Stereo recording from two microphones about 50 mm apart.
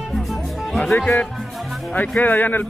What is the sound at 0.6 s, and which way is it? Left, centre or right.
Music, centre.